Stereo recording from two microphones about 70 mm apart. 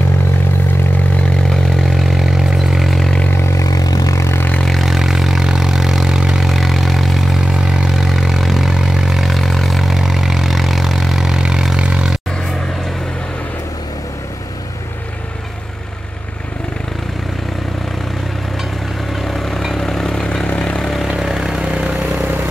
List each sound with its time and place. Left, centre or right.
1.5 s vehicle: centre
3.3 s vehicle: left
3.6 s vehicle: left
4.2 s vehicle: left
4.6 s vehicle: centre
19.2 s vehicle: centre
20.2 s vehicle: centre
21.1 s vehicle: centre